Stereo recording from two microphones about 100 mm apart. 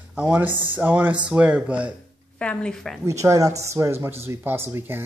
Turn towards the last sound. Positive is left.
turn(degrees=-20)  # may be behind; listen again after turning